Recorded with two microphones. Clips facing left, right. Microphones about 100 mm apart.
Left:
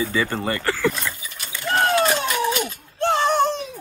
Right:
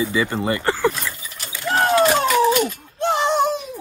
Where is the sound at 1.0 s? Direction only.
Centre (ahead or behind).